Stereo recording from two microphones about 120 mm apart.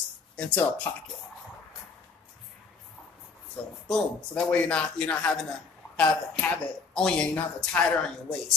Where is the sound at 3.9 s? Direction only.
10° left (ahead or behind).